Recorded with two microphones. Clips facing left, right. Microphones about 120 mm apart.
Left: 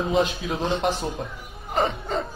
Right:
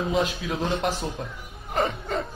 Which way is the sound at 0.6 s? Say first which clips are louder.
Left 2 dB; 25° left (ahead or behind).